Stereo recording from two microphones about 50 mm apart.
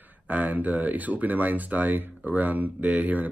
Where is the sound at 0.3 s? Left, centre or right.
Right.